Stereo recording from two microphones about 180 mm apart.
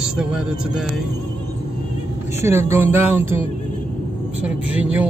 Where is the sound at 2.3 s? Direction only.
15° right (ahead or behind).